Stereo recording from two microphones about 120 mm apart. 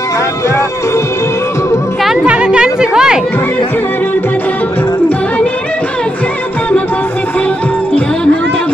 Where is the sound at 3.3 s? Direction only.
15° left (ahead or behind).